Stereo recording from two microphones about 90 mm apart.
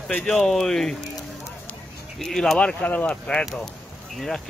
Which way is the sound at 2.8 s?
15° left (ahead or behind).